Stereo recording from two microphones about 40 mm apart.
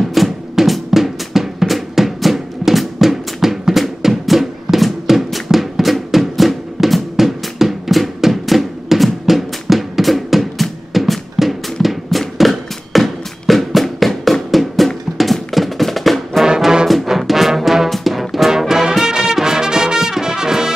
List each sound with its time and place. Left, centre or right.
0.1 s music: centre
0.8 s drum: centre
4.0 s music: centre
16.4 s brass instrument: centre
16.8 s music: centre